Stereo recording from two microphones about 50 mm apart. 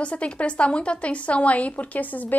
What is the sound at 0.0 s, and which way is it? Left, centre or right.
A woman's voice, left.